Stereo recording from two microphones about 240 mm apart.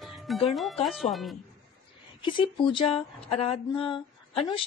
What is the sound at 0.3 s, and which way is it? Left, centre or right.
Speech, centre.